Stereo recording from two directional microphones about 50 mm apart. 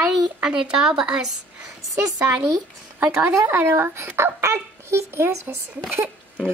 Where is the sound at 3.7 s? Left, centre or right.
Right.